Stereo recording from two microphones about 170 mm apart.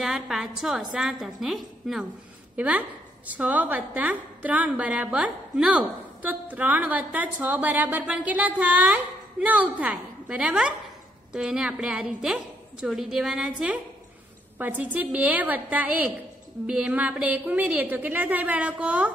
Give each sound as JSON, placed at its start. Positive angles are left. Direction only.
{"t": 0.0, "sound": "a woman's voice", "side_deg": 0}